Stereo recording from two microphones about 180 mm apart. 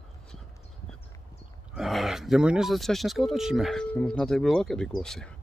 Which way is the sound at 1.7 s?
Centre (ahead or behind).